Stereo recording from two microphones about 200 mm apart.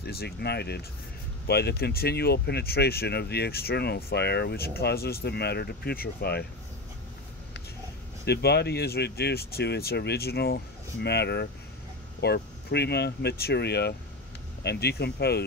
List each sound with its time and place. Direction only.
0.0 s speech: 55° left (ahead or behind)
8.3 s speech: 55° left (ahead or behind)